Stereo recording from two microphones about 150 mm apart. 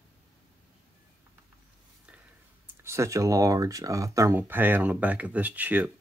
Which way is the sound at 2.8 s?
20° right (ahead or behind).